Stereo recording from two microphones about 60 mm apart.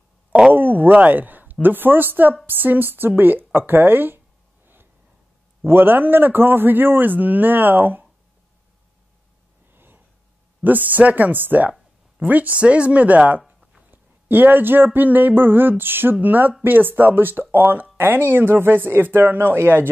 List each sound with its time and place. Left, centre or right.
0.5 s a man's voice: right
5.7 s a man's voice: right
9.8 s gasp: right
10.6 s a man's voice: right